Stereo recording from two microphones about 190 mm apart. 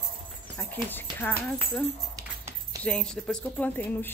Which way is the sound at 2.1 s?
15° right (ahead or behind).